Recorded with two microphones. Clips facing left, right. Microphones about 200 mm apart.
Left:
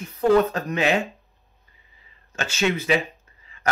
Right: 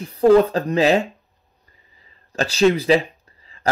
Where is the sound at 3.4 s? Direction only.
35° right (ahead or behind).